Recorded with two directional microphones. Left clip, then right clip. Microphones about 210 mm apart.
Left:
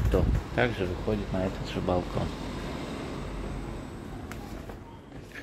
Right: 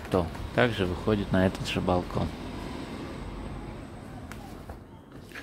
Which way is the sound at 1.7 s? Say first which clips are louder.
Right 1 dB; 10° right (ahead or behind).